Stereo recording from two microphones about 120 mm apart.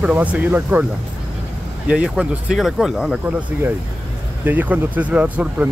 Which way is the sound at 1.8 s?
10° right (ahead or behind).